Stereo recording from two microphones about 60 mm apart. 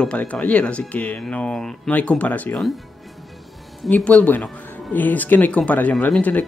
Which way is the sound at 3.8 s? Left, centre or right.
Left.